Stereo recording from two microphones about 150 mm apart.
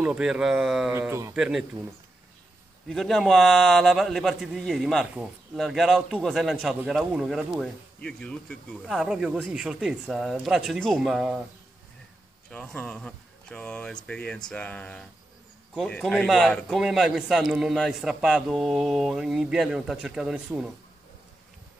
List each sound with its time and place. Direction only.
0.0 s a man's voice: 5° right (ahead or behind)
0.9 s speech: 15° right (ahead or behind)
1.3 s a man's voice: 5° right (ahead or behind)
2.9 s a man's voice: centre (ahead or behind)
12.4 s a man's voice: 10° left (ahead or behind)